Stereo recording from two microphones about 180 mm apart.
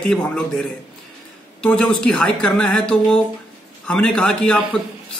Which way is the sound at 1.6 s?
5° left (ahead or behind).